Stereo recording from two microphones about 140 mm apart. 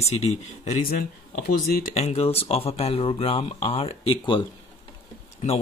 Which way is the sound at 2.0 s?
50° left (ahead or behind).